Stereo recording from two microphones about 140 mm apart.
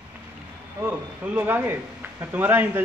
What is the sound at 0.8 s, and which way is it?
A man's voice, 10° right (ahead or behind).